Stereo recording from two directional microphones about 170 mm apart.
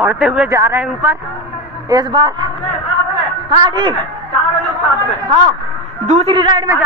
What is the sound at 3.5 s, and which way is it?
Speech, 30° right (ahead or behind).